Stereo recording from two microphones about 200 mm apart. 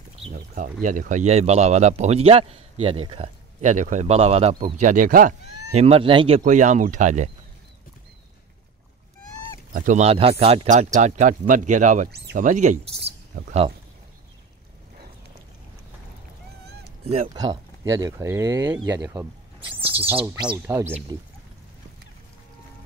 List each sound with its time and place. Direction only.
0.2 s speech: 40° right (ahead or behind)
9.7 s speech: 40° right (ahead or behind)
17.0 s speech: 30° right (ahead or behind)
17.3 s speech: 20° right (ahead or behind)
19.8 s a sound: 10° right (ahead or behind)
20.2 s speech: 20° right (ahead or behind)